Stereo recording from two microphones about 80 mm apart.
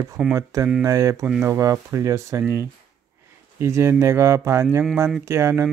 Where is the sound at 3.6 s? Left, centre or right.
Right.